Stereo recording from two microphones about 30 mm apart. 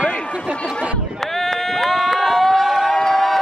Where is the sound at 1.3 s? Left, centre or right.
Centre.